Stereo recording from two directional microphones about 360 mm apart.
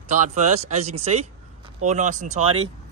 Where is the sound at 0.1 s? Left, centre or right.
Centre.